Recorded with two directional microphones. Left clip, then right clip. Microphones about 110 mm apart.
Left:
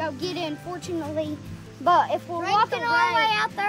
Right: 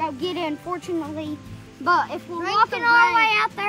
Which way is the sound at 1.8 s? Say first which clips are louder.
Left 1 dB; 35° left (ahead or behind).